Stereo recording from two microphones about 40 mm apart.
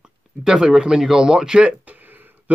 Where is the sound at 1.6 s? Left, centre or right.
Right.